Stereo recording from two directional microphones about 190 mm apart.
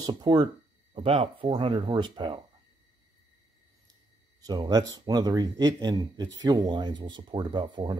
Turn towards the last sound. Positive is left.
turn(degrees=-25)  # may be behind; listen again after turning